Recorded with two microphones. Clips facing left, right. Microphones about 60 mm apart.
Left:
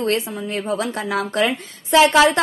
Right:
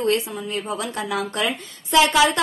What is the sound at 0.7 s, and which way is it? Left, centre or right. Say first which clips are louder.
A woman's voice: left 4 dB; left.